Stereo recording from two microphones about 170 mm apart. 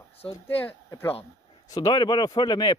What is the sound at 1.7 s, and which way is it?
Speech, 25° left (ahead or behind).